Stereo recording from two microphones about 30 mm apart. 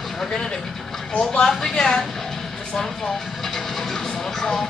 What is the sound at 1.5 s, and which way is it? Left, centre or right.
Speech, centre.